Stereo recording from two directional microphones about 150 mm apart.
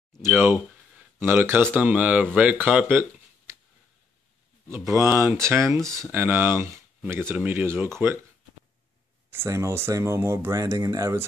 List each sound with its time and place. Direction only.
0.2 s speech: 15° right (ahead or behind)
2.6 s a sound: 10° right (ahead or behind)
4.6 s speech: 20° right (ahead or behind)
9.3 s speech: 15° right (ahead or behind)